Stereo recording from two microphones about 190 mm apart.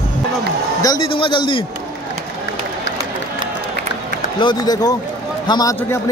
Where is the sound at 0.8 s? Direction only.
25° left (ahead or behind).